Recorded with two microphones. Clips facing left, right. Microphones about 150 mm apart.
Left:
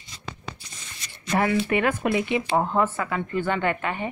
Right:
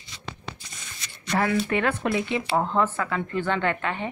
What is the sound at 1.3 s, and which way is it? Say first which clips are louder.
A woman's voice: left 1 dB; 15° left (ahead or behind).